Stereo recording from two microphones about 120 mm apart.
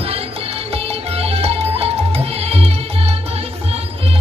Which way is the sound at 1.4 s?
60° right (ahead or behind).